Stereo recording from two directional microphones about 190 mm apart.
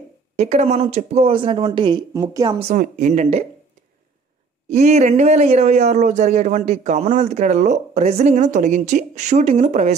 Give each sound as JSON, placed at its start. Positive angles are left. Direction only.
{"t": 0.4, "sound": "a woman's voice", "side_deg": -35}
{"t": 2.7, "sound": "speech", "side_deg": -40}
{"t": 4.6, "sound": "speech", "side_deg": -35}